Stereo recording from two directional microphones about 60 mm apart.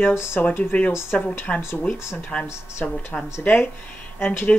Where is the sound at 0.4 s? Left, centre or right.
Left.